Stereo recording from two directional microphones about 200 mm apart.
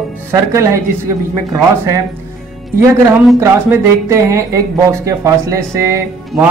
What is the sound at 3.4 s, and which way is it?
Speech, 15° right (ahead or behind).